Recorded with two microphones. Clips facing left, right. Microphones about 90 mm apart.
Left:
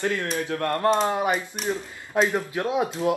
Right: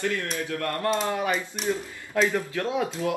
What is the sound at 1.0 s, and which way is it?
A man's voice, 25° left (ahead or behind).